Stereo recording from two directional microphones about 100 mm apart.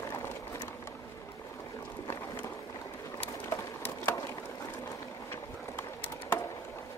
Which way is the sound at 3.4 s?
25° left (ahead or behind).